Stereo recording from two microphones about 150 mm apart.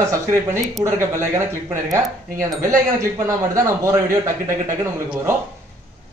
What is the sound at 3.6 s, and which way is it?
A man's voice, 20° right (ahead or behind).